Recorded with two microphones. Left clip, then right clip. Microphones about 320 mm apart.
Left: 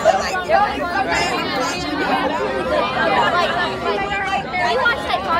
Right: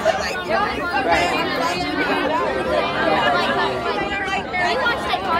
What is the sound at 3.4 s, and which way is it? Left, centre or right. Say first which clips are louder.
Chatter: left 1 dB; centre.